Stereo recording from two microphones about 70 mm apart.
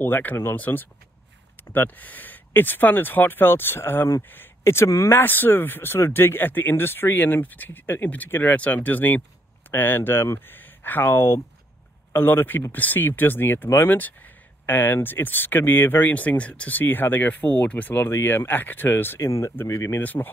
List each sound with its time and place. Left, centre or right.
0.0 s speech: left
19.1 s speech: left
20.0 s speech: left